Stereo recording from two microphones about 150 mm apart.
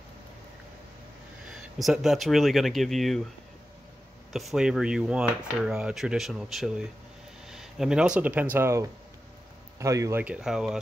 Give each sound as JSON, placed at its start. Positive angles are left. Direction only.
{"t": 1.8, "sound": "speech", "side_deg": 0}
{"t": 4.3, "sound": "speech", "side_deg": 0}
{"t": 10.2, "sound": "speech", "side_deg": -5}